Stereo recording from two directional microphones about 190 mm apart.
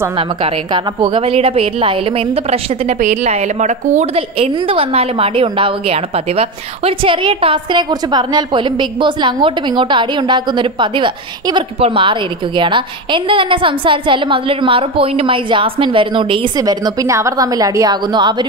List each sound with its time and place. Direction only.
0.4 s a woman's voice: 25° right (ahead or behind)